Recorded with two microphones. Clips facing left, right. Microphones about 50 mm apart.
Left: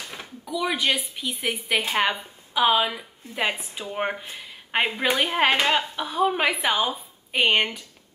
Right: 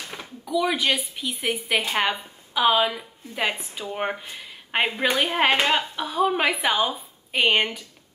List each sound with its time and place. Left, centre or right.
0.5 s a woman's voice: centre